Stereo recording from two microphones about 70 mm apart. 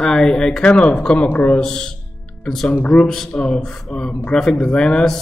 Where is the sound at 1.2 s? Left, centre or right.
Left.